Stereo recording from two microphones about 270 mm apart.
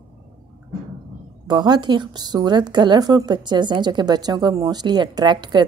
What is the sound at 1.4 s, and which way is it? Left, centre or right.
A woman's voice, centre.